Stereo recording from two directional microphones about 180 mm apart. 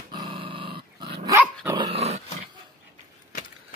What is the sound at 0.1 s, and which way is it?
Dog, 25° right (ahead or behind).